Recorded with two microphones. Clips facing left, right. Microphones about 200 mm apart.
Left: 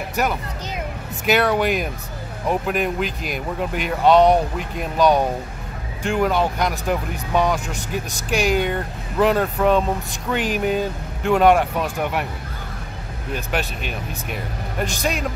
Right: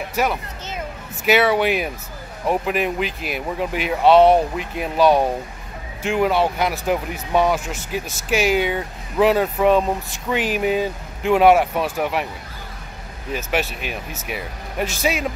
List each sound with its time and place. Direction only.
0.1 s speech: centre (ahead or behind)
13.3 s speech: 5° right (ahead or behind)